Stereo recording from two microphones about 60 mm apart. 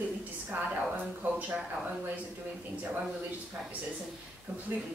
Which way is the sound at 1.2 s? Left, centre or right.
Right.